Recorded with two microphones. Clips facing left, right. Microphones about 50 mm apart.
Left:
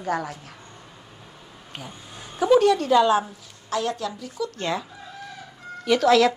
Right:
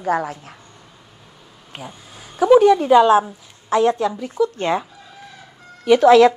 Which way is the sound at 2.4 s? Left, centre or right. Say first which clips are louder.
Right 6 dB; centre.